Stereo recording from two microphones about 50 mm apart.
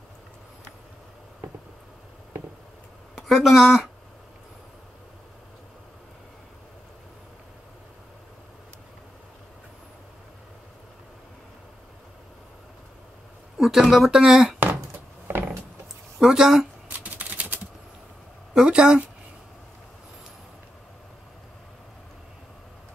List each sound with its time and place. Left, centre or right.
3.2 s speech: centre
13.6 s speech: centre
15.2 s a sound: right
16.2 s speech: centre
16.9 s typing: right
18.5 s speech: centre